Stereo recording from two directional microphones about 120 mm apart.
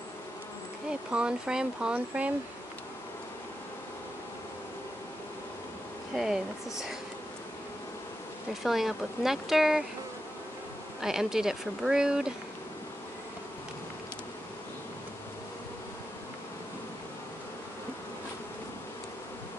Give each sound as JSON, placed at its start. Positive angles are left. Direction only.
{"t": 1.1, "sound": "speech", "side_deg": -5}
{"t": 6.1, "sound": "speech", "side_deg": -5}
{"t": 8.6, "sound": "speech", "side_deg": 0}
{"t": 11.0, "sound": "speech", "side_deg": -5}